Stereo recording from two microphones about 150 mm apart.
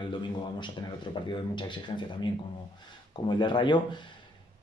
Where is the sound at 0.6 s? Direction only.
30° left (ahead or behind).